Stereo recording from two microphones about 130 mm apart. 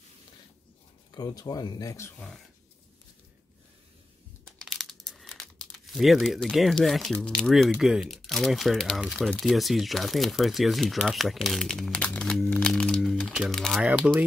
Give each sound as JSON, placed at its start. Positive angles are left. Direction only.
{"t": 1.1, "sound": "speech", "side_deg": 30}
{"t": 2.1, "sound": "speech", "side_deg": 5}
{"t": 4.5, "sound": "speech", "side_deg": 5}
{"t": 13.7, "sound": "speech", "side_deg": -10}